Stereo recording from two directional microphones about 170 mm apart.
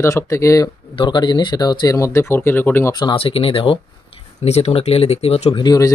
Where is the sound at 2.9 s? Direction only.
25° left (ahead or behind).